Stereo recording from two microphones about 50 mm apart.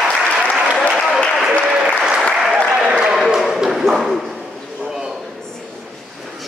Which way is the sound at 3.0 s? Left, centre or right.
Centre.